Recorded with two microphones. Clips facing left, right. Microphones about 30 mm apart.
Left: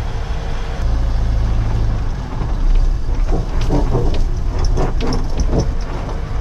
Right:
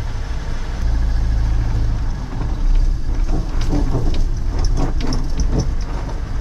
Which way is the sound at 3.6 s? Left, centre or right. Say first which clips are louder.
Left 3 dB; left.